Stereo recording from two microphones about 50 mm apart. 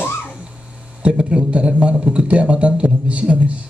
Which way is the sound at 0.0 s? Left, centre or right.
Left.